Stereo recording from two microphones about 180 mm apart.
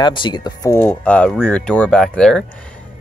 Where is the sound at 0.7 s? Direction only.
10° left (ahead or behind).